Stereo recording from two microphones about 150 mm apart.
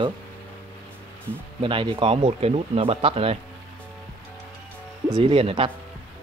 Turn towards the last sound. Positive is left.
turn(degrees=-35)  # may be behind; listen again after turning